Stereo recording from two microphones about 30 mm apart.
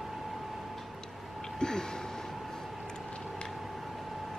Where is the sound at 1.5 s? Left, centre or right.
Left.